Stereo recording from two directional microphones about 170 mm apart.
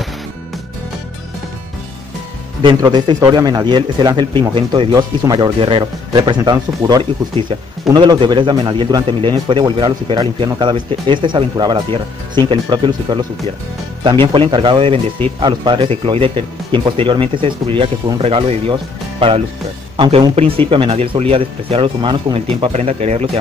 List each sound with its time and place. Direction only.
2.6 s a man's voice: 25° right (ahead or behind)
14.2 s a man's voice: 30° right (ahead or behind)